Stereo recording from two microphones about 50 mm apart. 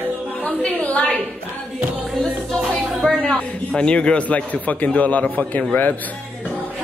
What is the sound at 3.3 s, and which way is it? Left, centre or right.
A man's voice, left.